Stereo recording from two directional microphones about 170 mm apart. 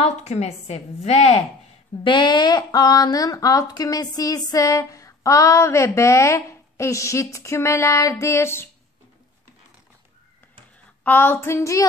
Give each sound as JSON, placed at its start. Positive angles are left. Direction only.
{"t": 0.0, "sound": "a woman's voice", "side_deg": 40}
{"t": 2.0, "sound": "speech", "side_deg": 25}
{"t": 11.1, "sound": "speech", "side_deg": 10}